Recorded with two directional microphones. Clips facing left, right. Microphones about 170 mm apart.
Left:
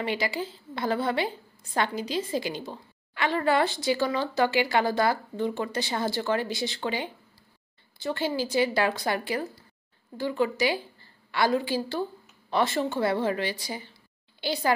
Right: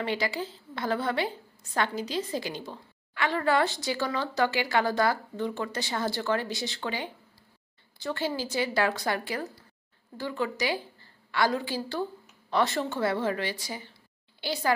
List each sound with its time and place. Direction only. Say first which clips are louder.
0.0 s speech: left 1 dB; 10° left (ahead or behind)
12.4 s a sound: left 1 dB; 15° left (ahead or behind)
12.9 s speech: left 2 dB; 20° left (ahead or behind)